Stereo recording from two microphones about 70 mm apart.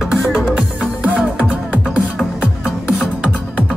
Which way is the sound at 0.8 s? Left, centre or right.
Centre.